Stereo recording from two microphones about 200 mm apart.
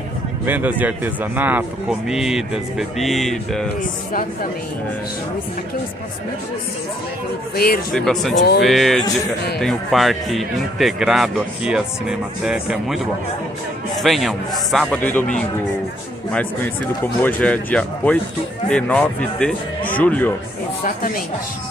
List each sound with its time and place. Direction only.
0.5 s speech: 10° right (ahead or behind)
7.5 s speech: 50° left (ahead or behind)
7.9 s speech: centre (ahead or behind)
20.8 s speech: 45° left (ahead or behind)